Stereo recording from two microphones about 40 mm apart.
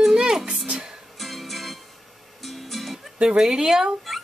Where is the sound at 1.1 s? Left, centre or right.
Centre.